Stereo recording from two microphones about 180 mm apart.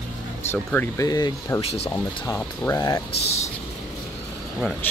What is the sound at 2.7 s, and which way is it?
Speech, 15° left (ahead or behind).